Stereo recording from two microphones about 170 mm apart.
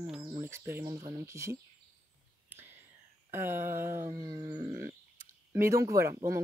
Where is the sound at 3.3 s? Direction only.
15° right (ahead or behind).